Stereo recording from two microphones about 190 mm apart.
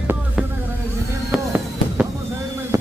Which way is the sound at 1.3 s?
5° right (ahead or behind).